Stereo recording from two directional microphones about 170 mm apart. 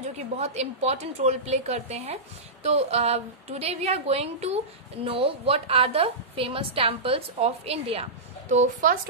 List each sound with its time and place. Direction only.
0.4 s a woman's voice: 40° right (ahead or behind)